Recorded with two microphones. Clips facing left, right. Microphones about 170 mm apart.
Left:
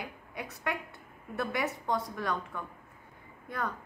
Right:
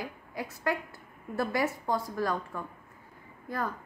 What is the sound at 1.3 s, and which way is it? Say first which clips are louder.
A woman's voice: right 3 dB; centre (ahead or behind).